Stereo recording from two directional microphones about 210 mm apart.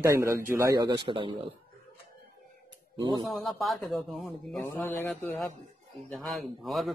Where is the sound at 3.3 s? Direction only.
Centre (ahead or behind).